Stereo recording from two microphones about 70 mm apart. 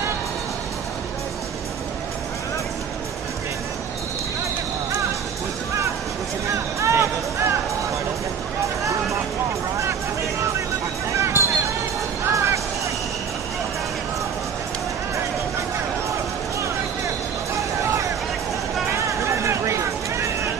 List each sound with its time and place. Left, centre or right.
6.5 s music: right
11.1 s a sound: right
12.3 s music: right
18.9 s vehicle: right